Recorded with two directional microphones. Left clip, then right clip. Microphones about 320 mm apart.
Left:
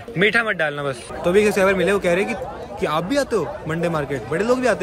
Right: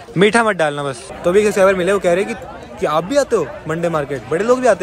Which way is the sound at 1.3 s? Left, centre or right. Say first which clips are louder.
Right 4 dB; centre.